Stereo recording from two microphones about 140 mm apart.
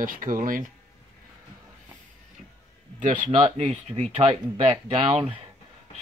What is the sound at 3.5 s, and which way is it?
Speech, 45° right (ahead or behind).